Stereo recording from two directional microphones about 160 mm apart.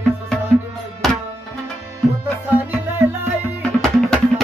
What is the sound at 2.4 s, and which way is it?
Music, 15° right (ahead or behind).